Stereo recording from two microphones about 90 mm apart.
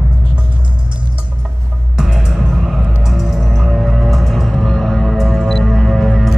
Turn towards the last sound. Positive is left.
turn(degrees=0)  # may be behind; listen again after turning